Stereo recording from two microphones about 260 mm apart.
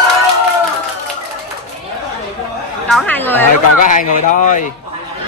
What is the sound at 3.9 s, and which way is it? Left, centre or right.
Speech, left.